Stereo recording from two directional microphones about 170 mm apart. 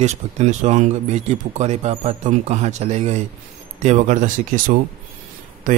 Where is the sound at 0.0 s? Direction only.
40° right (ahead or behind).